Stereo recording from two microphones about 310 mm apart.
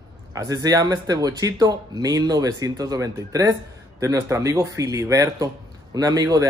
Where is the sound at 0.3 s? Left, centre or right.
Centre.